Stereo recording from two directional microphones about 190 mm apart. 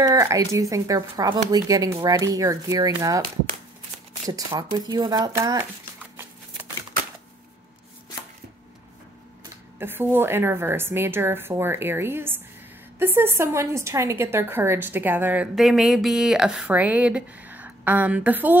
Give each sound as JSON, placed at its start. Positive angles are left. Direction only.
{"t": 0.0, "sound": "a woman's voice", "side_deg": -15}
{"t": 4.3, "sound": "speech", "side_deg": -20}
{"t": 9.8, "sound": "a woman's voice", "side_deg": -10}